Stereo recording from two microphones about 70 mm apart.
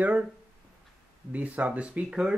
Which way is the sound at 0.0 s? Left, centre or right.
Centre.